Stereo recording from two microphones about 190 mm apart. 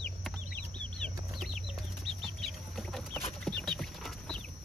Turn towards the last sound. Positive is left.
turn(degrees=0)  # may be behind; listen again after turning